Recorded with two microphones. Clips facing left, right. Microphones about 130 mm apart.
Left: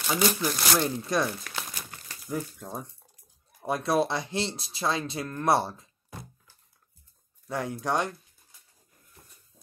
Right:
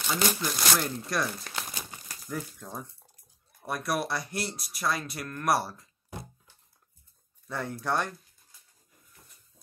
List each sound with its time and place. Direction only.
0.0 s speech: 5° left (ahead or behind)
0.8 s speech: 20° left (ahead or behind)
7.4 s speech: 15° left (ahead or behind)